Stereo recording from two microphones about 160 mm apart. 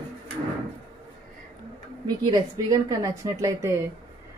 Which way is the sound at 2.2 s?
20° right (ahead or behind).